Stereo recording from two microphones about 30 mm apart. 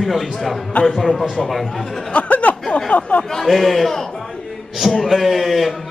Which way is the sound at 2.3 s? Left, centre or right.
Left.